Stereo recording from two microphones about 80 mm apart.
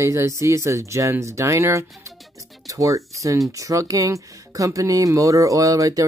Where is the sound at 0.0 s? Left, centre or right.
Right.